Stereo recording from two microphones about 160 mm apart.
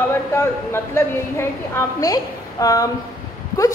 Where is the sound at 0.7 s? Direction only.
15° left (ahead or behind).